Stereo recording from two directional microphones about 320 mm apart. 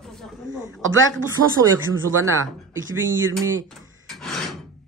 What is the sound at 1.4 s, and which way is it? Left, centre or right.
Speech, right.